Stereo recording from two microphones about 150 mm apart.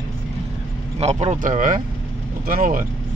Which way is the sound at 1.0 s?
45° right (ahead or behind).